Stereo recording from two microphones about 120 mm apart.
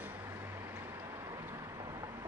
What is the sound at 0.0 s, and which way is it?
Vehicle, 20° right (ahead or behind).